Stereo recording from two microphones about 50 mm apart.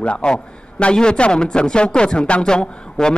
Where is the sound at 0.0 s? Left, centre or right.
Centre.